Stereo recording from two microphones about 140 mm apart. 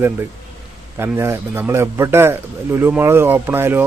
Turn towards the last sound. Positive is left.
turn(degrees=-15)  # may be behind; listen again after turning